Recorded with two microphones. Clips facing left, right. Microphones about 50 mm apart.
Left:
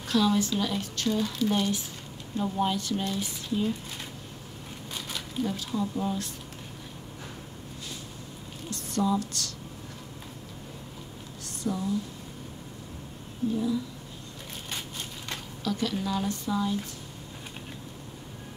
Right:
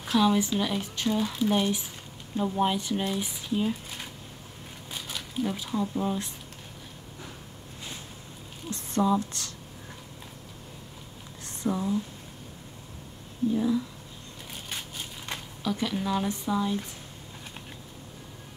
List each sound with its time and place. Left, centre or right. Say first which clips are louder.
0.0 s speech: right 1 dB; centre
8.6 s speech: right 2 dB; right
11.6 s speech: right 2 dB; right
15.6 s speech: even; centre